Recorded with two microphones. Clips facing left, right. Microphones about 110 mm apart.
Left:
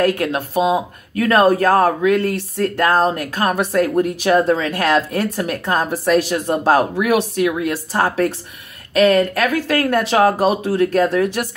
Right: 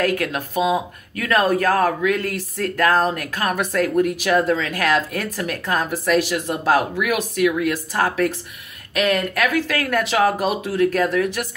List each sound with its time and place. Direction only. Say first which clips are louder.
0.0 s speech: left 4 dB; 30° left (ahead or behind)